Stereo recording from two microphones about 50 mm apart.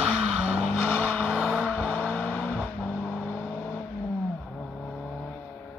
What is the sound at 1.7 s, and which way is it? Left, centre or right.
Vehicle, left.